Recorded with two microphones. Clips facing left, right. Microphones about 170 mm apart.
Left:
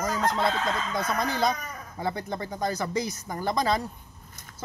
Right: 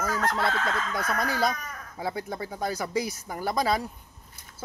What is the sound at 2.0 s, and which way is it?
Speech, 5° right (ahead or behind).